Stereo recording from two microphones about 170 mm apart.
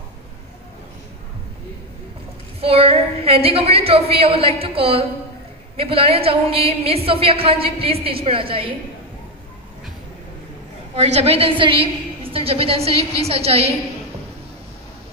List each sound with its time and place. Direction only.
2.6 s a woman's voice: 35° right (ahead or behind)
11.0 s a woman's voice: 35° right (ahead or behind)